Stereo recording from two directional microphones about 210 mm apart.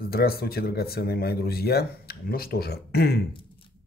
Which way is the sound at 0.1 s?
45° left (ahead or behind).